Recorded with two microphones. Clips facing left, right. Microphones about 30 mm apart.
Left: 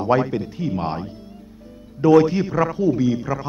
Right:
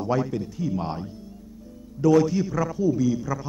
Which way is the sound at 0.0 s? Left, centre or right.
Left.